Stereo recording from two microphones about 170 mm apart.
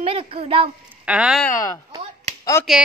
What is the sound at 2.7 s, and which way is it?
Speech, centre (ahead or behind).